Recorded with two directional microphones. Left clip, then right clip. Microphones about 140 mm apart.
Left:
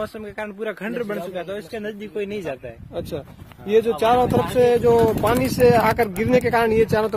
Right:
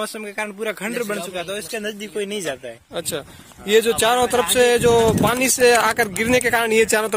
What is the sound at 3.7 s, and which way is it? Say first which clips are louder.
Speech: right 1 dB; 5° right (ahead or behind).